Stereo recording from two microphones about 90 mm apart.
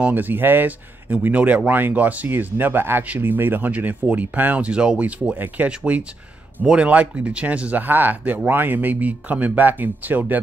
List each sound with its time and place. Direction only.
0.0 s speech: 20° right (ahead or behind)